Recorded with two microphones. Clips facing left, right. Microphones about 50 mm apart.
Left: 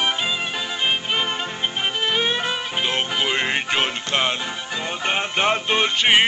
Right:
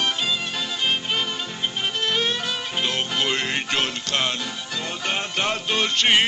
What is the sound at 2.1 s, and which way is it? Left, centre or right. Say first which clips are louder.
Music: left 3 dB; centre.